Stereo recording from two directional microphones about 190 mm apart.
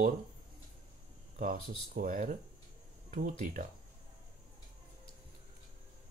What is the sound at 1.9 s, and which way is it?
Speech, 45° right (ahead or behind).